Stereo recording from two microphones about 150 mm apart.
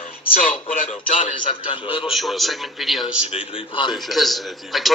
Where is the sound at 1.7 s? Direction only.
35° left (ahead or behind).